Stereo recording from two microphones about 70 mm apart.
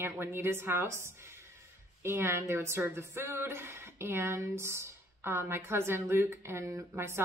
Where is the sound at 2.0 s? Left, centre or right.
Right.